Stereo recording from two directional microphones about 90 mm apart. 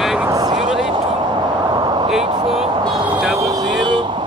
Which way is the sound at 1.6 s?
60° right (ahead or behind).